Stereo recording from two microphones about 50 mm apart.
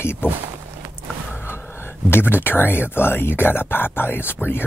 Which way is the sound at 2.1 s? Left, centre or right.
Left.